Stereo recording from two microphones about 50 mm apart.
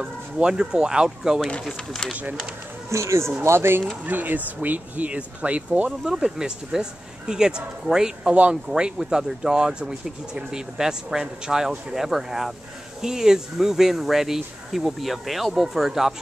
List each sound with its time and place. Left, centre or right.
0.0 s speech: centre
2.9 s speech: right
3.4 s speech: right
4.0 s speech: right
5.9 s speech: centre
8.3 s speech: right
8.7 s speech: centre